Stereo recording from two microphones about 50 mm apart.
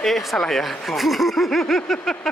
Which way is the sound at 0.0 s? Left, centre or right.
Centre.